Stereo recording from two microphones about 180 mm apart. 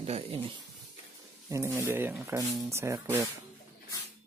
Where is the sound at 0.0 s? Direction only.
35° right (ahead or behind).